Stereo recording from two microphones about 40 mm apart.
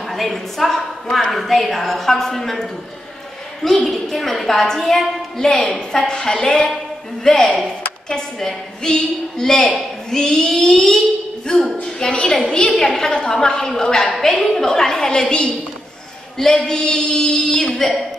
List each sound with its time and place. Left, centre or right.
0.0 s a sound: centre
0.6 s a woman's voice: centre
1.3 s a woman's voice: centre
3.8 s a woman's voice: centre
14.2 s a woman's voice: centre
17.7 s a woman's voice: centre